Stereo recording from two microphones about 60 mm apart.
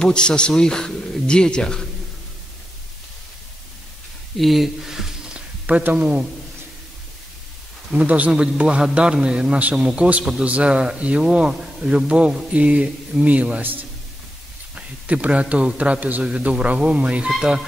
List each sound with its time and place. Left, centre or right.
0.0 s a man's voice: centre
4.4 s speech: centre; by 6.2 s right
7.9 s a man's voice: right
10.4 s a man's voice: right
14.8 s a man's voice: right